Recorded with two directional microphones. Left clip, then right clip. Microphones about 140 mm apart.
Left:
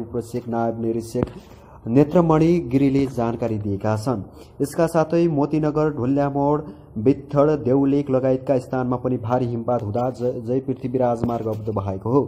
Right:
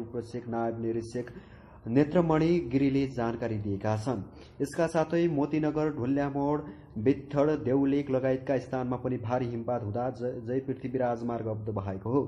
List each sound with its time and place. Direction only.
0.5 s a man's voice: 30° left (ahead or behind)